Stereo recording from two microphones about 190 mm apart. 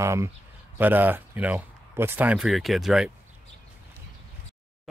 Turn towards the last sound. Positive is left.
turn(degrees=0)  # may be behind; listen again after turning